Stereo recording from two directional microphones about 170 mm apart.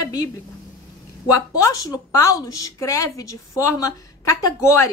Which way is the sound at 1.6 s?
20° left (ahead or behind).